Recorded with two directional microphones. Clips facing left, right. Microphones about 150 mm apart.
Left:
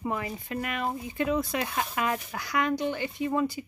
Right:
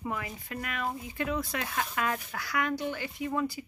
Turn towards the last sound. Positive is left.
turn(degrees=20)  # may be behind; listen again after turning